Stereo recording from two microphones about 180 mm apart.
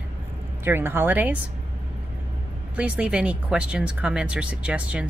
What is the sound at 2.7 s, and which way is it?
Speech, 5° right (ahead or behind).